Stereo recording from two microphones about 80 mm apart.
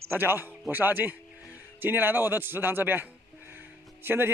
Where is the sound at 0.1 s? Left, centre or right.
Right.